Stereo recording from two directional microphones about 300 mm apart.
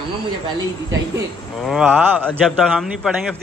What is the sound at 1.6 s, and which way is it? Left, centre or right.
Speech, centre.